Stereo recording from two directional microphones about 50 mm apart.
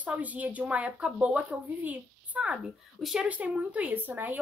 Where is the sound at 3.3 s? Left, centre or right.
Right.